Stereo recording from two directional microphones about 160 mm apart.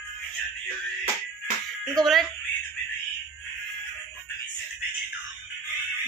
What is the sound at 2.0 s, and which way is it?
Speech, centre (ahead or behind).